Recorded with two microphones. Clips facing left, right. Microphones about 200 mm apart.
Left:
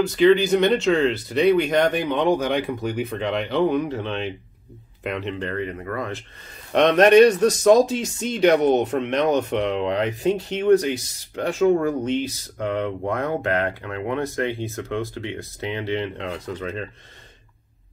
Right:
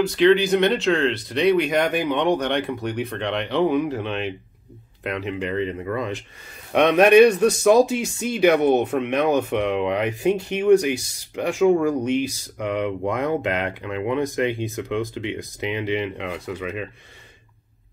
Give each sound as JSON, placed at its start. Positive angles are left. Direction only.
{"t": 0.0, "sound": "speech", "side_deg": 0}
{"t": 5.3, "sound": "speech", "side_deg": -10}